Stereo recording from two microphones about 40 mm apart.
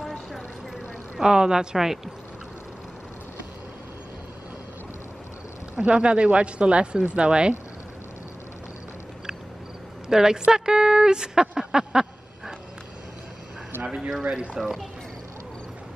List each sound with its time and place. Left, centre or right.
0.0 s vehicle: centre
1.1 s a woman's voice: centre
5.8 s speech: right
10.0 s a woman's voice: centre
14.3 s speech: right
14.6 s a woman's voice: centre